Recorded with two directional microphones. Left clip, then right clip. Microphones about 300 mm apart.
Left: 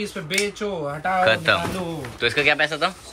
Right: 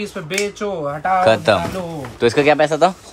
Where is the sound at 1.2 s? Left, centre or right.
Centre.